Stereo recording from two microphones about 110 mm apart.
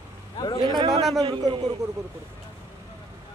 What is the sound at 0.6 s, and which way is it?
A man's voice, 40° right (ahead or behind).